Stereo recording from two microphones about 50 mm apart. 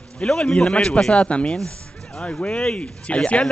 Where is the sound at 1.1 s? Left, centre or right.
Left.